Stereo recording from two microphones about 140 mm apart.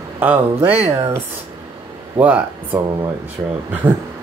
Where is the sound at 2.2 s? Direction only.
35° right (ahead or behind).